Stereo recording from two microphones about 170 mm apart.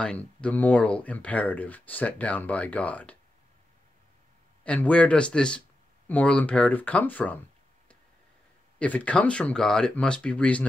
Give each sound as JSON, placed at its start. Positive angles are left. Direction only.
{"t": 0.0, "sound": "speech", "side_deg": 5}
{"t": 4.6, "sound": "speech", "side_deg": 10}
{"t": 8.7, "sound": "speech", "side_deg": 10}